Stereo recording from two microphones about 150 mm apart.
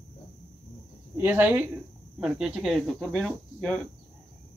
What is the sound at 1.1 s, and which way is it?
Speech, 15° right (ahead or behind).